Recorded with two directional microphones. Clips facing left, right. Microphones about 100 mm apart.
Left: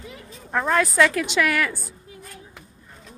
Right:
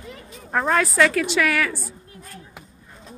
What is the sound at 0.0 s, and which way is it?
A woman's voice, centre (ahead or behind).